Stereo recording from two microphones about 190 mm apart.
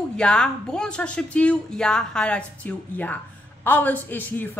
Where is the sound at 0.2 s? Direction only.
5° left (ahead or behind).